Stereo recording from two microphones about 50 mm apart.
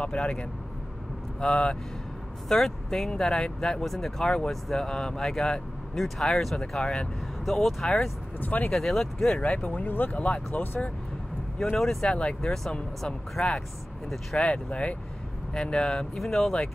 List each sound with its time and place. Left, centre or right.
0.0 s speech: left
2.4 s speech: centre
8.4 s speech: left
8.7 s speech: centre
9.5 s speech: left
10.1 s speech: left
11.7 s speech: centre
12.1 s speech: left
12.4 s speech: centre; by 15.0 s left
15.5 s speech: centre